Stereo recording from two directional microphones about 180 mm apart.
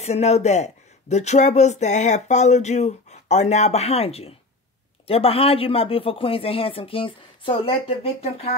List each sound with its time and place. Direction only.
0.0 s speech: 35° left (ahead or behind)